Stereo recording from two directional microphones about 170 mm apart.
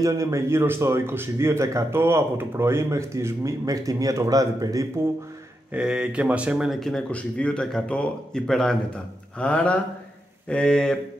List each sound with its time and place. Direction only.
0.0 s speech: 20° right (ahead or behind)
5.7 s speech: 5° right (ahead or behind)